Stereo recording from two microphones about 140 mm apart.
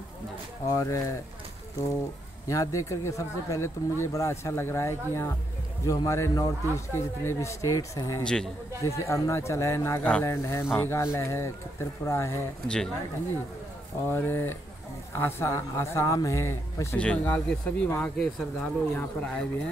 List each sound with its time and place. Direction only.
0.7 s speech: 25° left (ahead or behind)
2.4 s speech: 25° left (ahead or behind)
8.2 s speech: 5° left (ahead or behind)
8.8 s speech: 20° left (ahead or behind)
12.6 s speech: 5° left (ahead or behind)
14.0 s speech: 15° left (ahead or behind)